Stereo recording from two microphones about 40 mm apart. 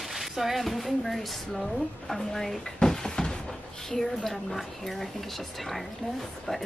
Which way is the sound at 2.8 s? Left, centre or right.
Centre.